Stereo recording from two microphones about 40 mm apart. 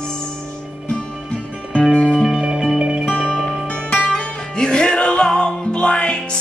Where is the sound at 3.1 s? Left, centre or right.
Centre.